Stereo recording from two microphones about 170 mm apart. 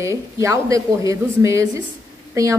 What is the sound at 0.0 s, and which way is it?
A woman's voice, 20° right (ahead or behind).